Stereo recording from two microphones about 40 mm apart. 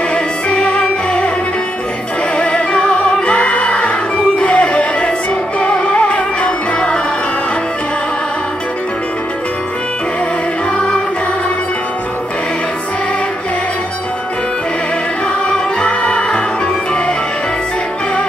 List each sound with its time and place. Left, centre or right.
0.1 s music: left
2.3 s music: left
15.8 s music: left